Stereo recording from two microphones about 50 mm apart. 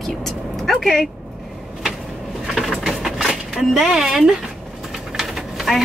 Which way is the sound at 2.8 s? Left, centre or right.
Centre.